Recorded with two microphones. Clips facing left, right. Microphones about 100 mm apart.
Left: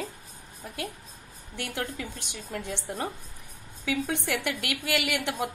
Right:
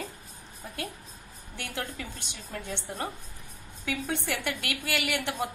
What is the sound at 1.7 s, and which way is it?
A woman's voice, 15° left (ahead or behind).